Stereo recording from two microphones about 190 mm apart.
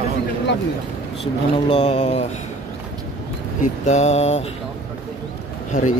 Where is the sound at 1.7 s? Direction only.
30° left (ahead or behind).